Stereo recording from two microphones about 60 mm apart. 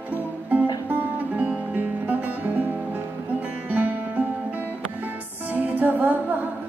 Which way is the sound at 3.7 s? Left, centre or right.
Right.